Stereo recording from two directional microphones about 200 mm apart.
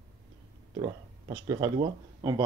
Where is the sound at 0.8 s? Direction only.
25° right (ahead or behind).